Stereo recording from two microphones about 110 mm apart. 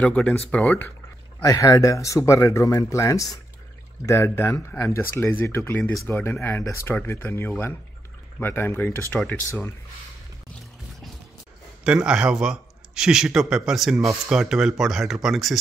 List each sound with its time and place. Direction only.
0.0 s speech: 15° left (ahead or behind)
1.4 s speech: 30° left (ahead or behind)
11.8 s speech: 10° right (ahead or behind)